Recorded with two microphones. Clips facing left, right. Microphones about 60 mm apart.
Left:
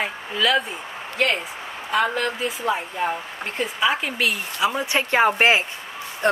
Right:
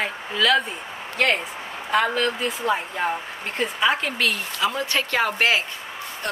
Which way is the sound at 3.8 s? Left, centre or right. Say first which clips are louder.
Even; centre.